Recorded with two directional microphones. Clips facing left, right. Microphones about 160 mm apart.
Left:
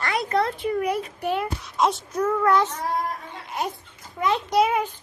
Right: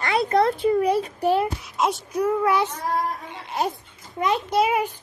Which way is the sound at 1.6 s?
5° right (ahead or behind).